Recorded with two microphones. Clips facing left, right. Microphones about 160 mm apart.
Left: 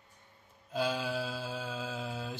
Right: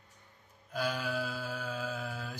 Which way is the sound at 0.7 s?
25° left (ahead or behind).